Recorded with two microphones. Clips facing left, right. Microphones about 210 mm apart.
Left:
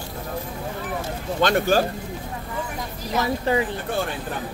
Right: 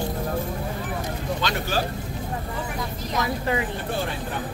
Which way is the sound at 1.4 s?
50° left (ahead or behind).